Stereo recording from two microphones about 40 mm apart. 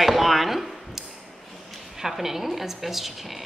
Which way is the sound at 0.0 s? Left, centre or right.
Centre.